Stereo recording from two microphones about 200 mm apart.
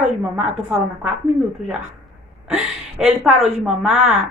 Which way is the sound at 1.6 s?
5° right (ahead or behind).